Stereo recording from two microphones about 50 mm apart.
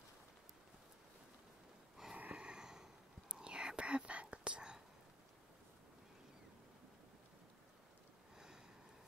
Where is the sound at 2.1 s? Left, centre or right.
Right.